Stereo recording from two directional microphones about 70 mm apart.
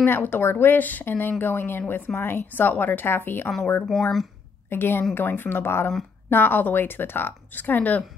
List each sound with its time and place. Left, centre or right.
0.0 s a woman's voice: left
3.9 s speech: centre
4.6 s a woman's voice: left